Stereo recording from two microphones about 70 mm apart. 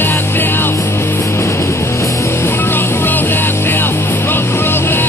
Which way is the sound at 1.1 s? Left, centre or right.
Left.